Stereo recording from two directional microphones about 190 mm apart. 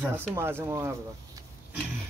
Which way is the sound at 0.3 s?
15° right (ahead or behind).